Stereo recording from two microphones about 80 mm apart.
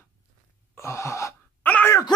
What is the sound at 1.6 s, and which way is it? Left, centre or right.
Speech, left.